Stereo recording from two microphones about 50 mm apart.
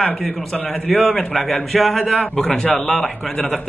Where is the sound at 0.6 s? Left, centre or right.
Left.